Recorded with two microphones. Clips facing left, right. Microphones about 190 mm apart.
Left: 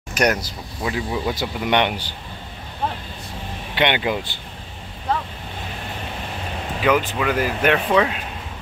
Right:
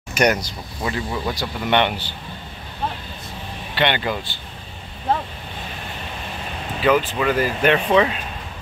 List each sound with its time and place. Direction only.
0.1 s speech: centre (ahead or behind)
3.7 s speech: 15° left (ahead or behind)
6.8 s speech: 10° left (ahead or behind)